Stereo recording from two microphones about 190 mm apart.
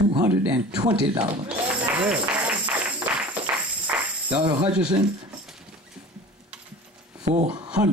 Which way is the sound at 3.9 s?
30° right (ahead or behind).